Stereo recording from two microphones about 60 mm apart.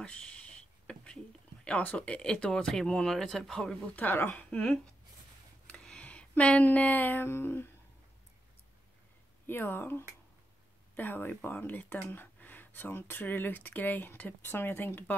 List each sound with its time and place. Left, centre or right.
0.0 s speech: centre
0.9 s a sound: centre
1.6 s speech: left
3.9 s speech: left
4.5 s speech: centre
5.7 s a sound: centre; by 7.7 s left
9.5 s speech: left
14.5 s speech: left